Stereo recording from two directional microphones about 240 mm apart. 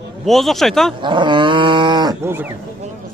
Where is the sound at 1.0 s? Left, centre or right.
Centre.